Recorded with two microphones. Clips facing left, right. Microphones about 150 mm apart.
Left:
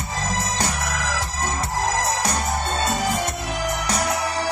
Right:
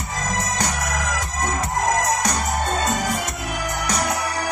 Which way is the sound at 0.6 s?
30° left (ahead or behind).